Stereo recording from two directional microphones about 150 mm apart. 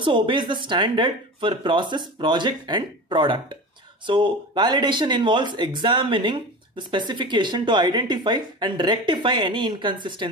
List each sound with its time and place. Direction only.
0.0 s speech: 35° right (ahead or behind)